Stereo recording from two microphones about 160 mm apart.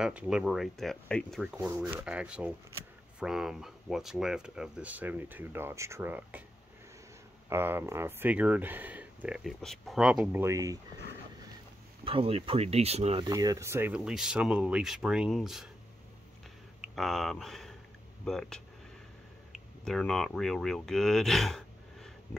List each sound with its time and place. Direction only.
0.0 s speech: 5° right (ahead or behind)
7.4 s speech: 15° right (ahead or behind)
12.0 s speech: 35° right (ahead or behind)
13.2 s speech: 25° right (ahead or behind); by 15.7 s centre (ahead or behind)
16.8 s speech: centre (ahead or behind)